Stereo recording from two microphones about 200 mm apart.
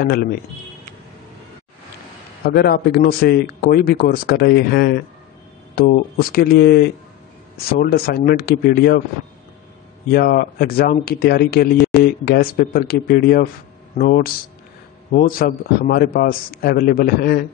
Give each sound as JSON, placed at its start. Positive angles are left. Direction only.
{"t": 0.0, "sound": "speech", "side_deg": 50}
{"t": 2.4, "sound": "speech", "side_deg": 50}
{"t": 10.1, "sound": "speech", "side_deg": 50}